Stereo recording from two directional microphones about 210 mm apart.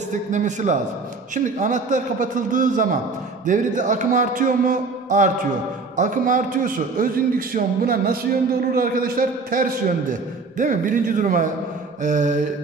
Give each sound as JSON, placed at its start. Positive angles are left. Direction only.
{"t": 0.3, "sound": "a man's voice", "side_deg": -35}